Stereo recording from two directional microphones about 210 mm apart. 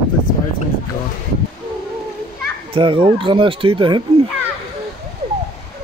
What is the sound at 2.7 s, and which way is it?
Speech, 25° right (ahead or behind).